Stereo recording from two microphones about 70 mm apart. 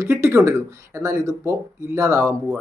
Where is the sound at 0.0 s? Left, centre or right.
Right.